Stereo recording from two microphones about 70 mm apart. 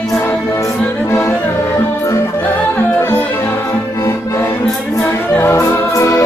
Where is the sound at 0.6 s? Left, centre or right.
Left.